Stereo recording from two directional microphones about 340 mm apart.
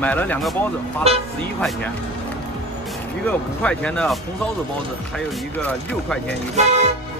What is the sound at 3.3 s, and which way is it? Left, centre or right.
Speech, centre.